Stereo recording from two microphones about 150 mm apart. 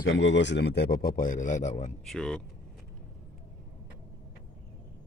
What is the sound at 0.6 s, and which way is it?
Speech, 90° left.